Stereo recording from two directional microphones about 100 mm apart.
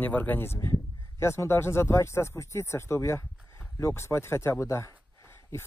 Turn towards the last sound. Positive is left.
turn(degrees=30)  # may be behind; listen again after turning